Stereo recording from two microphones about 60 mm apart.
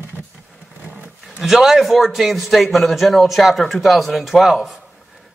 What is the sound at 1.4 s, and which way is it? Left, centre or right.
A man's voice, centre.